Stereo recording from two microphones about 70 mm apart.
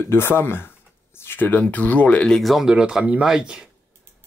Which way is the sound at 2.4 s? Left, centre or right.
Centre.